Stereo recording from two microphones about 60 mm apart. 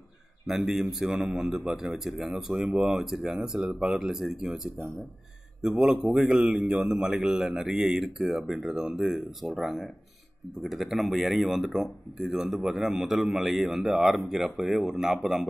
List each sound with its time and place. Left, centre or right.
0.5 s a man's voice: centre
2.6 s speech: centre
2.9 s a man's voice: centre
5.6 s a man's voice: centre